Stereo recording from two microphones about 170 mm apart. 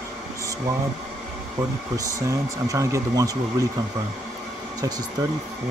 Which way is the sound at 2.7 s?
20° right (ahead or behind).